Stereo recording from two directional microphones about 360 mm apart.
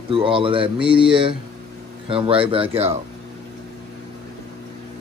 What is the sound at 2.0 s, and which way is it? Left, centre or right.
Speech, centre.